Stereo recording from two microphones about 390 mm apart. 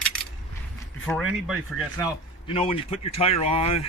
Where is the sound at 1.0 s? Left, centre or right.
Centre.